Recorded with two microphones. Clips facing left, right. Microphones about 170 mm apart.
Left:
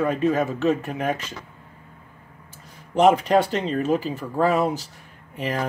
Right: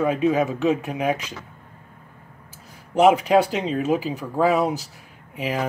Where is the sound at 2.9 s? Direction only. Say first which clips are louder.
Right 1 dB; 5° right (ahead or behind).